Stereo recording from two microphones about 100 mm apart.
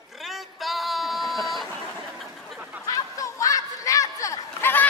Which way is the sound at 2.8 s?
35° left (ahead or behind).